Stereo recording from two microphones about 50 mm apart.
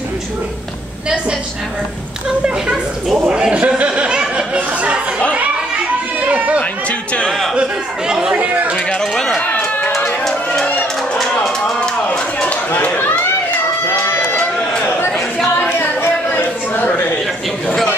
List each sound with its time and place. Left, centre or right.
2.2 s speech: centre
4.6 s chatter: right
6.2 s a sound: right
6.6 s chatter: left
7.2 s music: centre
7.5 s chatter: centre
8.4 s chatter: right
8.7 s speech: centre
9.4 s run: left
11.4 s a sound: centre
12.4 s chatter: left
13.8 s a sound: left
15.8 s a sound: left